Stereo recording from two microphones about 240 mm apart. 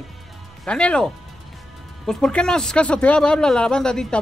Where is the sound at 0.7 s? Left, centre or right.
Centre.